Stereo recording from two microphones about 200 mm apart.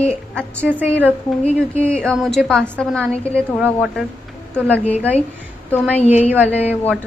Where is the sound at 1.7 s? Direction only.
5° left (ahead or behind).